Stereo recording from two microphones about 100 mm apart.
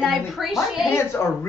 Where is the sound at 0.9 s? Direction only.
25° left (ahead or behind).